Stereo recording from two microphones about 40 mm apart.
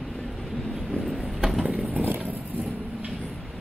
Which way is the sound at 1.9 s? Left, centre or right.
Right.